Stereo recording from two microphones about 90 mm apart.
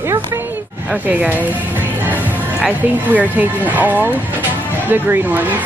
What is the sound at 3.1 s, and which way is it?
Speech, 15° right (ahead or behind).